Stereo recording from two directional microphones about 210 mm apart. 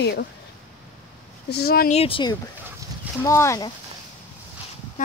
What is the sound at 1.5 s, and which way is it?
Speech, 45° left (ahead or behind).